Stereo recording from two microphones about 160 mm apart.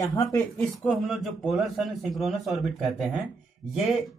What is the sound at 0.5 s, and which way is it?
A man's voice, centre (ahead or behind).